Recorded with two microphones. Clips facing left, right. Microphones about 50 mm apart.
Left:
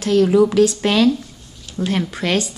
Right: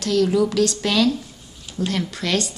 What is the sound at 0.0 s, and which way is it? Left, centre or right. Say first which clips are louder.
A woman's voice: left 5 dB; left.